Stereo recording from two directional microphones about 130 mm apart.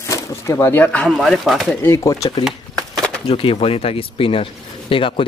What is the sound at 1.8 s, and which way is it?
Speech, 20° left (ahead or behind).